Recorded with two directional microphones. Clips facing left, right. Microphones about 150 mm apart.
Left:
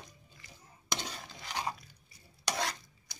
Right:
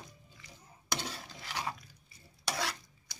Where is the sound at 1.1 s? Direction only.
15° left (ahead or behind).